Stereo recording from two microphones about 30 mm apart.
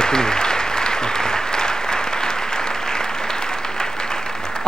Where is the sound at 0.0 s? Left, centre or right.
Left.